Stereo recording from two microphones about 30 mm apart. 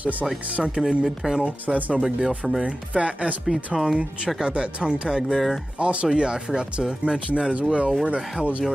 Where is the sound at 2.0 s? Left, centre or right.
Right.